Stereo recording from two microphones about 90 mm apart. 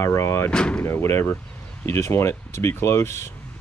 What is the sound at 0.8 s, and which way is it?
Speech, 30° left (ahead or behind).